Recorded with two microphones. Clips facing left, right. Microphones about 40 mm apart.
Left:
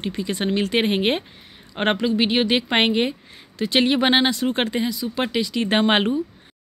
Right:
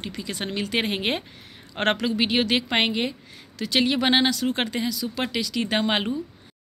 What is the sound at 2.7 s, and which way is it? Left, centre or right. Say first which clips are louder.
Speech: left 4 dB; left.